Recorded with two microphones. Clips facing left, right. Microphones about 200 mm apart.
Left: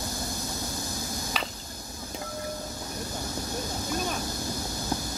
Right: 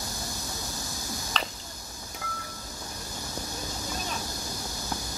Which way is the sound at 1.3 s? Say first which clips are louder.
Right 1 dB; 10° left (ahead or behind).